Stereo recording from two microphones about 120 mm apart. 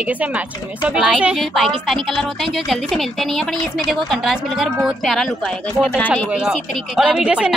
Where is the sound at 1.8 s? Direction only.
Centre (ahead or behind).